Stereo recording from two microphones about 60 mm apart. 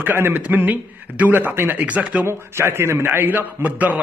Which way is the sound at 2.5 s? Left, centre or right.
Right.